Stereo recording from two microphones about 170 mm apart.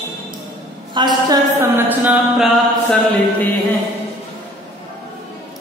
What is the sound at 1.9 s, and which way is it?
Music, 10° right (ahead or behind).